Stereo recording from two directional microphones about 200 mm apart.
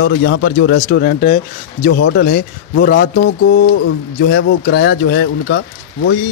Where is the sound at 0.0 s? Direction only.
60° left (ahead or behind).